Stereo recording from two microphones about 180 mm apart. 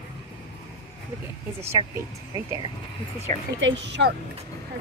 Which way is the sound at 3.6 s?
85° right.